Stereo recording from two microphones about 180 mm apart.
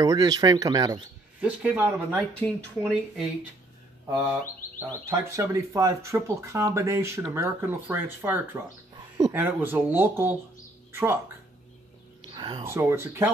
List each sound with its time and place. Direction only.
0.0 s speech: 20° right (ahead or behind)
1.4 s speech: 10° right (ahead or behind)
2.4 s speech: centre (ahead or behind)
5.1 s speech: 15° right (ahead or behind)
12.4 s speech: 25° right (ahead or behind)